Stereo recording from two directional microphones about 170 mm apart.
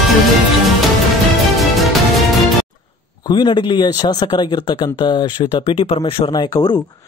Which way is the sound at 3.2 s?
25° left (ahead or behind).